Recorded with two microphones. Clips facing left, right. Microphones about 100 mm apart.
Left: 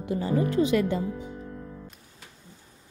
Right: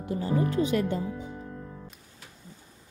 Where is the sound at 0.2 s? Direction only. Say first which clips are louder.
Left 2 dB; 90° left.